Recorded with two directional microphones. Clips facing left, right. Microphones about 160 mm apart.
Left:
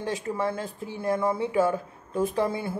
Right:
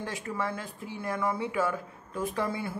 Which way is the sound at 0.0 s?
25° left (ahead or behind).